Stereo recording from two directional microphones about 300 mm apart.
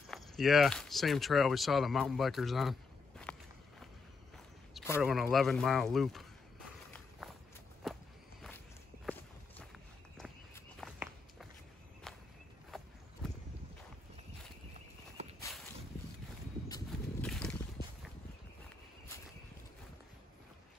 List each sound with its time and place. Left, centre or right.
0.1 s speech: centre
4.7 s speech: centre
7.2 s walk: centre
10.1 s walk: centre
12.7 s walk: centre
15.2 s walk: right
16.6 s horse: centre
17.3 s boat: centre